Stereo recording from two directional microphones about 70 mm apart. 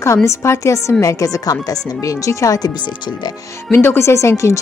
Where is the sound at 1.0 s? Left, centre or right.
Left.